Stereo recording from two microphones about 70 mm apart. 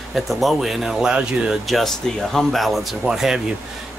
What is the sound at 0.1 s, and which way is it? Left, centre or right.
Speech, centre.